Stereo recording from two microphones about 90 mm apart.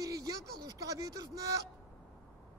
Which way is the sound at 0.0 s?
40° right (ahead or behind).